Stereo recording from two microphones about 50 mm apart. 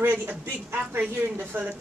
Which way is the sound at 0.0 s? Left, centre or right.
Right.